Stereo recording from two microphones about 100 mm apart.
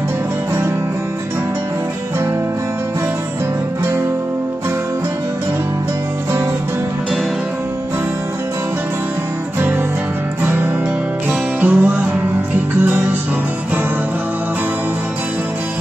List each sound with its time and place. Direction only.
10.4 s music: 20° right (ahead or behind)